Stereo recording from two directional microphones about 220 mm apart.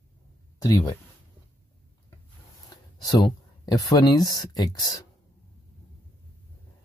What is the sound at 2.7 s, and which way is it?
Speech, 20° left (ahead or behind).